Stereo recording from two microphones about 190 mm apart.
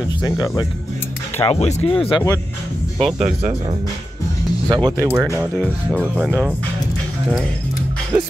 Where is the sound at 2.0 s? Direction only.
20° left (ahead or behind).